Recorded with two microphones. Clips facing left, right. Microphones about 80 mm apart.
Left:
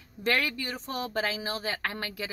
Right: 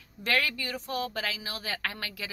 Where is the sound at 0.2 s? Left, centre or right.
Left.